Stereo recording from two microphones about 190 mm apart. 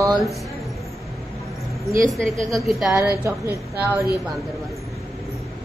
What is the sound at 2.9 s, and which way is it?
Speech, 15° right (ahead or behind).